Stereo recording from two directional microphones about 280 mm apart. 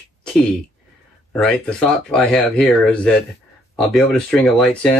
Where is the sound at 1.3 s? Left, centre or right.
Centre.